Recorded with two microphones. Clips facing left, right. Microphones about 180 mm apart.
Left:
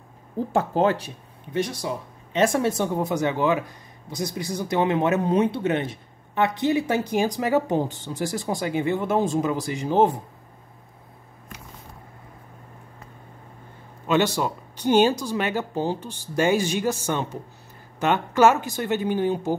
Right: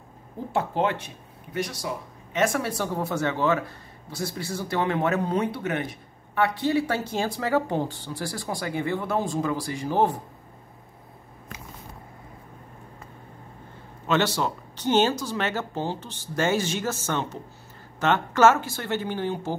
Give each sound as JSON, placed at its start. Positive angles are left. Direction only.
{"t": 0.5, "sound": "speech", "side_deg": 40}
{"t": 14.0, "sound": "speech", "side_deg": 15}